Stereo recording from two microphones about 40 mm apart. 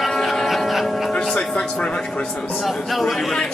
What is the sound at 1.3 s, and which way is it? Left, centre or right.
Speech, left.